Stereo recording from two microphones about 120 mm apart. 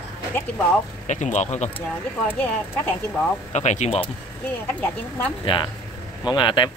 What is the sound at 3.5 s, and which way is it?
Speech, 70° left (ahead or behind).